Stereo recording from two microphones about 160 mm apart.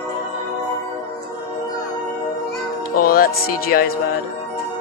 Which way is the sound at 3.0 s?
70° left (ahead or behind).